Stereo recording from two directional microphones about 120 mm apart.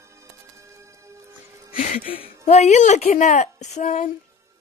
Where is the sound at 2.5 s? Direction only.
70° left (ahead or behind); by 3.5 s 90° left.